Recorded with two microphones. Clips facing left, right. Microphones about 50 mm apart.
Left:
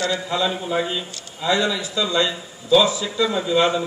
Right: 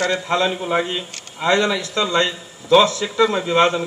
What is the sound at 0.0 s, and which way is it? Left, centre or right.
Speech, right.